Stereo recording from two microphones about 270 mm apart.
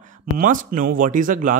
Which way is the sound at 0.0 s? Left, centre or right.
Right.